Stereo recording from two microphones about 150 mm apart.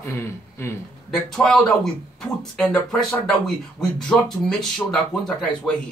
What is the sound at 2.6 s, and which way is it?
Speech, 5° left (ahead or behind).